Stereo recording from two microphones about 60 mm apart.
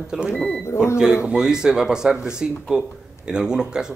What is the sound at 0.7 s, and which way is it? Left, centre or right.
Speech, left.